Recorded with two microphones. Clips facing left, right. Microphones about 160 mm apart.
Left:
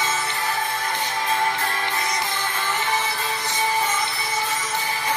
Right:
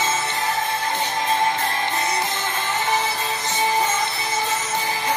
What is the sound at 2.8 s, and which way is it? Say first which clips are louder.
Music: right 4 dB; 20° right (ahead or behind).